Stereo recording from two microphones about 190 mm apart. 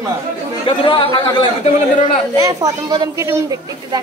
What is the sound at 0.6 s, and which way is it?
Speech, 25° left (ahead or behind).